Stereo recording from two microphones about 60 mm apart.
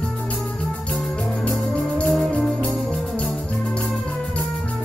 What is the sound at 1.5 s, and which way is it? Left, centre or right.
Music, centre.